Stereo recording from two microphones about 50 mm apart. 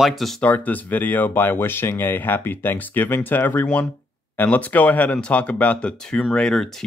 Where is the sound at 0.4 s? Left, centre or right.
Left.